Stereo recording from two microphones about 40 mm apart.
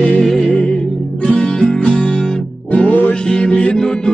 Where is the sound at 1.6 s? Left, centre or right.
Left.